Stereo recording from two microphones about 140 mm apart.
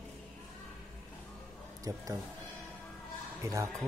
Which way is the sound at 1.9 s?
25° right (ahead or behind).